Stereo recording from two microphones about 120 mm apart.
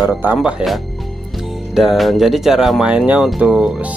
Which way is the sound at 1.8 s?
Centre (ahead or behind).